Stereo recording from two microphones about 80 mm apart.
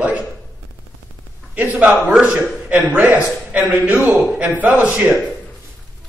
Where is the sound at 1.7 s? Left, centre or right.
Centre.